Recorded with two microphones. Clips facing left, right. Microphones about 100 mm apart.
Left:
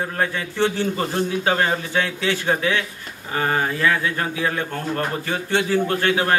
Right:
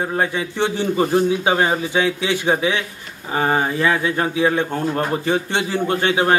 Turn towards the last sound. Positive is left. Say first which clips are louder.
# right 2 dB
turn(degrees=-20)  # may be behind; listen again after turning